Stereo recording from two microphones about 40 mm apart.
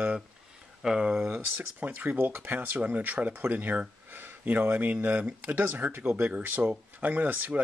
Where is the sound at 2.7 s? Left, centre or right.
Right.